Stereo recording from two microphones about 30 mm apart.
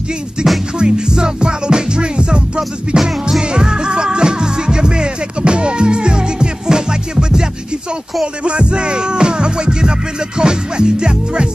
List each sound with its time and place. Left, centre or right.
0.7 s music: right
3.0 s music: centre
8.5 s music: right